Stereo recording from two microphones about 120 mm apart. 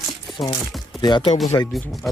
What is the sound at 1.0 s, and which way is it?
Speech, 40° left (ahead or behind).